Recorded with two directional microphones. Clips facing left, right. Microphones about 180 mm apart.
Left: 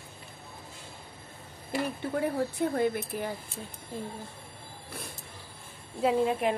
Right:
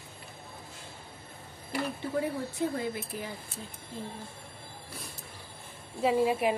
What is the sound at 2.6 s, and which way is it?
Speech, 60° left (ahead or behind).